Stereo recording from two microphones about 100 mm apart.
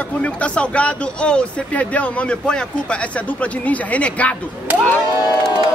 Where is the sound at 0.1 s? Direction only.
15° left (ahead or behind).